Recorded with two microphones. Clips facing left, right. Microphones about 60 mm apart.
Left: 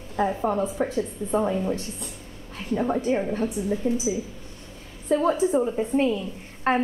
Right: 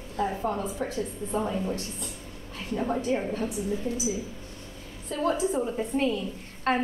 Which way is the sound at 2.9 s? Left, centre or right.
Centre.